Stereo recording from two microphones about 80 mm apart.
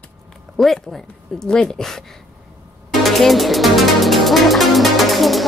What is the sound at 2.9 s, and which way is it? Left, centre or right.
Music, centre.